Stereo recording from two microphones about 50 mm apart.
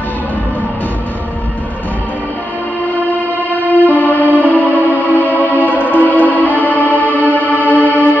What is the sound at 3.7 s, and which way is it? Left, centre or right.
Music, left.